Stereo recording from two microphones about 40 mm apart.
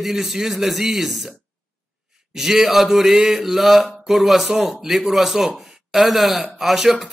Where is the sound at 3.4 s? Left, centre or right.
Centre.